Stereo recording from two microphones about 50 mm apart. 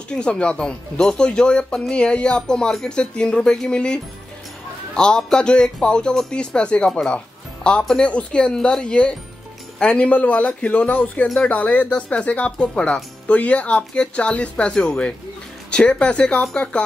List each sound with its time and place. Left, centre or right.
0.1 s speech: centre
11.9 s speech: centre